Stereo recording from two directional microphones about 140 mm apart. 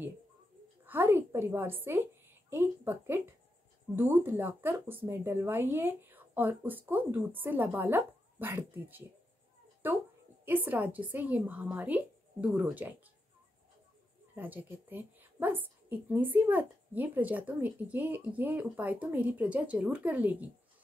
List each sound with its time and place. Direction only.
0.8 s a woman's voice: 15° right (ahead or behind)
14.3 s a woman's voice: 10° right (ahead or behind)